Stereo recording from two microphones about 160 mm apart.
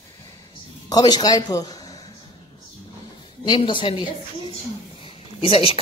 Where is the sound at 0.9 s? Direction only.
25° left (ahead or behind).